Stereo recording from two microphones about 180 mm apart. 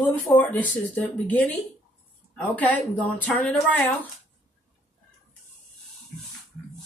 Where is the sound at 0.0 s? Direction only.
10° left (ahead or behind).